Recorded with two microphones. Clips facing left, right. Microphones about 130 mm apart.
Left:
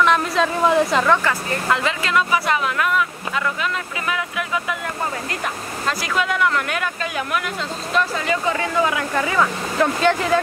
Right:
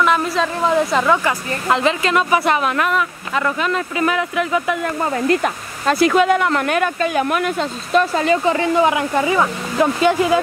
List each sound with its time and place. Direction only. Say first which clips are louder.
0.0 s a woman's voice: right 1 dB; centre (ahead or behind)
1.7 s speech: right 5 dB; 25° right (ahead or behind)
2.5 s speech: right 3 dB; 55° right (ahead or behind)
3.3 s speech: right 5 dB; 45° right (ahead or behind)
5.9 s speech: right 9 dB; 50° right (ahead or behind)
8.3 s speech: right 6 dB; 30° right (ahead or behind); by 10.4 s 10° right (ahead or behind)